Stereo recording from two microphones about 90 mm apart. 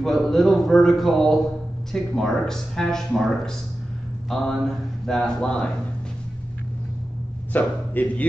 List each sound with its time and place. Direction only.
0.0 s speech: centre (ahead or behind)
7.5 s speech: 20° left (ahead or behind)